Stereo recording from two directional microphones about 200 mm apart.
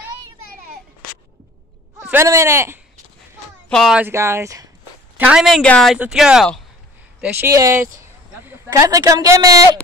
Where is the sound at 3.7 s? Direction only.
Centre (ahead or behind).